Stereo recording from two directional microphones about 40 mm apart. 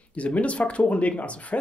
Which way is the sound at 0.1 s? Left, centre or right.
Left.